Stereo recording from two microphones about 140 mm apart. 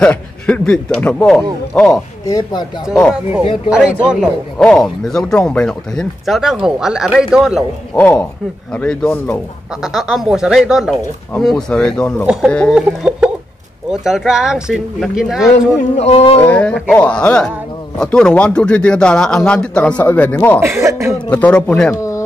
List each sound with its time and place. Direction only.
0.0 s a man's voice: 10° left (ahead or behind)
2.2 s speech: 25° left (ahead or behind)
3.7 s chicken: 5° right (ahead or behind)
4.6 s speech: 5° left (ahead or behind)
8.0 s a man's voice: 15° left (ahead or behind); by 12.5 s 5° right (ahead or behind)
12.7 s chicken: 5° right (ahead or behind)
14.0 s speech: centre (ahead or behind)
16.0 s speech: 50° left (ahead or behind)
16.4 s a man's voice: 10° left (ahead or behind)
20.8 s speech: 20° right (ahead or behind)
21.3 s a man's voice: 10° left (ahead or behind)